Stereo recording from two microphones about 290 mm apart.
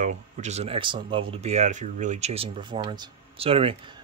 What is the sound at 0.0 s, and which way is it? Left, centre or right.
Speech, right.